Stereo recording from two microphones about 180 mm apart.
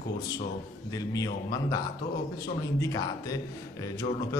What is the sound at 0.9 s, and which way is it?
A man's voice, 20° left (ahead or behind).